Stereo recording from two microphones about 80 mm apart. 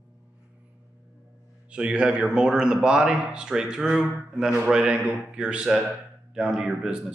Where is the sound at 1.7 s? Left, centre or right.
Centre.